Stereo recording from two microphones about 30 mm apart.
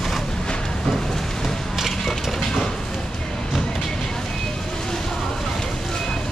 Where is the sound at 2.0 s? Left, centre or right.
Centre.